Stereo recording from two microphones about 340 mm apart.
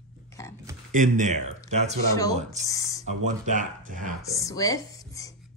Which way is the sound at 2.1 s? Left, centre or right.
Centre.